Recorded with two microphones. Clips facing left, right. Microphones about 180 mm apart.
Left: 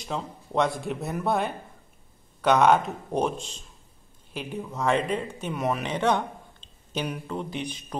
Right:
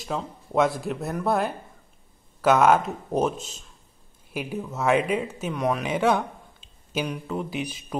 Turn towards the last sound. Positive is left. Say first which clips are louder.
# right 2 dB
turn(degrees=-5)  # may be behind; listen again after turning